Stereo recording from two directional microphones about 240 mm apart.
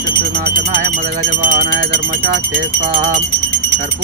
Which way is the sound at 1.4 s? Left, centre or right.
Right.